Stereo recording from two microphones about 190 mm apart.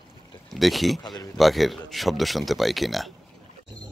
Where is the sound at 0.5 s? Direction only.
Centre (ahead or behind).